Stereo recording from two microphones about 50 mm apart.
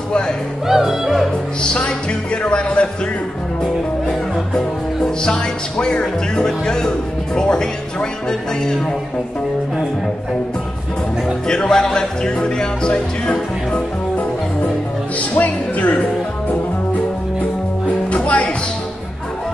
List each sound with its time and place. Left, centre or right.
0.7 s speech: centre
1.6 s music: centre
2.4 s speech: left
5.2 s music: centre
11.4 s music: centre
15.1 s speech: left
17.8 s music: left